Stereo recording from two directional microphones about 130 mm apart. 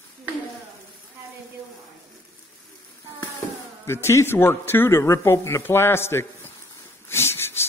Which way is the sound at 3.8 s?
20° left (ahead or behind).